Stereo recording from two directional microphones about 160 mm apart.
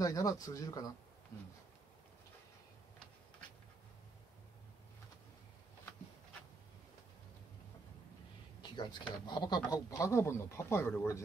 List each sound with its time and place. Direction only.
0.0 s speech: 20° left (ahead or behind)
8.6 s speech: 30° left (ahead or behind)